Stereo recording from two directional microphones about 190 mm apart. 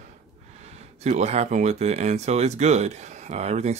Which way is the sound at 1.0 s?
35° right (ahead or behind).